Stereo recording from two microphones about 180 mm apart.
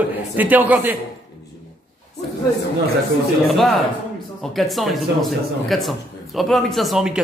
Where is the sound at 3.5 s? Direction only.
Centre (ahead or behind).